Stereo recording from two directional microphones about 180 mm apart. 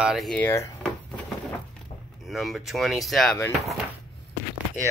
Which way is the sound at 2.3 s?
Centre (ahead or behind).